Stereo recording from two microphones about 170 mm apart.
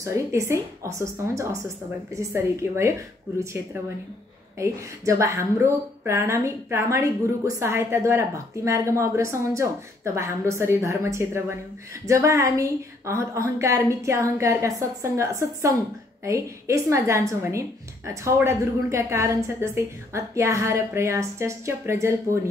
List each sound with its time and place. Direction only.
0.0 s a woman's voice: 15° right (ahead or behind)
4.6 s a woman's voice: 15° right (ahead or behind)